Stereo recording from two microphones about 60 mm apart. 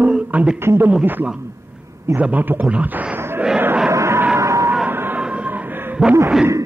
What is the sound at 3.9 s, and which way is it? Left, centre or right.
Music, right.